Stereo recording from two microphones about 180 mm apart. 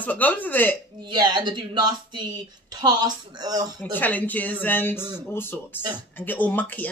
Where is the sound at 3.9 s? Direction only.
10° left (ahead or behind).